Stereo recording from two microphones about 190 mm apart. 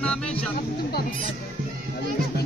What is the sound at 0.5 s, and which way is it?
Speech, 50° left (ahead or behind).